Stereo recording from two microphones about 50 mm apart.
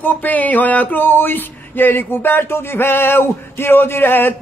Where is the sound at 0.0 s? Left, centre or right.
Left.